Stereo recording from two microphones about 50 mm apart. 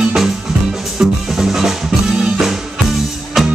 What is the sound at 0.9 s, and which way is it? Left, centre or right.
Music, centre.